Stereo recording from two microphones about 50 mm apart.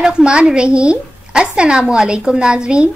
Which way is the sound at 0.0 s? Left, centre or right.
Centre.